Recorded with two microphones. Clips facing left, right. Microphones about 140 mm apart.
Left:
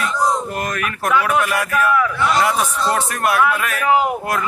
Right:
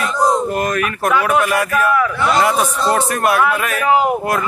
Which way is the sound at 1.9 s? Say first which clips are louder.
Right 2 dB; 25° right (ahead or behind).